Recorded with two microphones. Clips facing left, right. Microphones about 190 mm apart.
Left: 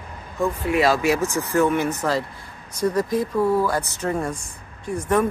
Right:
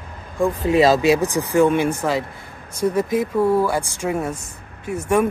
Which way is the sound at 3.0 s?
25° right (ahead or behind).